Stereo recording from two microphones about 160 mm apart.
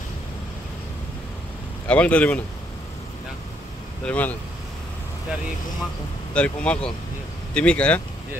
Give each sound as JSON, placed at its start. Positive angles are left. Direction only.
{"t": 1.9, "sound": "speech", "side_deg": 10}
{"t": 4.0, "sound": "speech", "side_deg": 10}
{"t": 6.3, "sound": "speech", "side_deg": 5}